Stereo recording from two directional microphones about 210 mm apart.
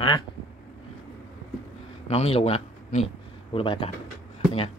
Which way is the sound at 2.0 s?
30° left (ahead or behind).